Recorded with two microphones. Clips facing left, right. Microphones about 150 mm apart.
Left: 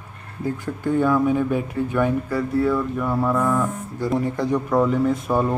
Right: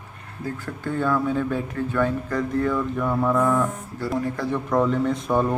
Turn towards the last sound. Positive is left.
turn(degrees=5)  # may be behind; listen again after turning